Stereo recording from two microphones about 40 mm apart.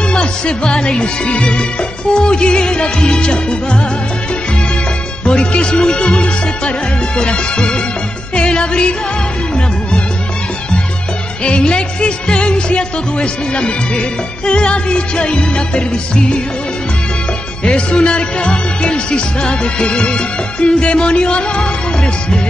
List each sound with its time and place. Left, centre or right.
0.1 s music: left
0.7 s music: centre
1.0 s music: left
5.2 s music: left
11.4 s music: left
17.6 s music: left